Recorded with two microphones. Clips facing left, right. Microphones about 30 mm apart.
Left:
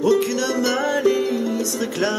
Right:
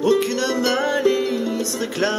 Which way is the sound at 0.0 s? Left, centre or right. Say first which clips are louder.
Even; centre.